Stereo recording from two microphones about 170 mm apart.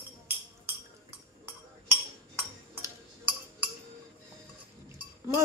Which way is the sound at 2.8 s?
10° right (ahead or behind).